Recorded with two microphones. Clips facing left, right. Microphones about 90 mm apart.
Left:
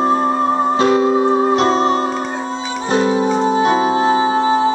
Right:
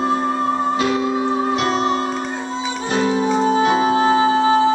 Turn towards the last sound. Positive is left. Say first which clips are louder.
# left 1 dB
turn(degrees=25)  # may be behind; listen again after turning